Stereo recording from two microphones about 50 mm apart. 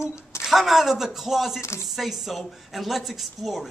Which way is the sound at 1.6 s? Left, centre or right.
Left.